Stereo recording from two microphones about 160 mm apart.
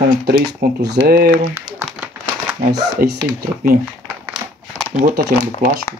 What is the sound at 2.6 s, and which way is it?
Speech, 90° right.